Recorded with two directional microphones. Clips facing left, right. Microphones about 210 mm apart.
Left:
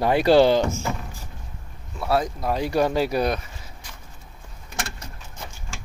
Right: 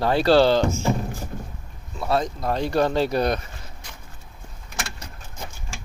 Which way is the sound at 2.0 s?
5° left (ahead or behind).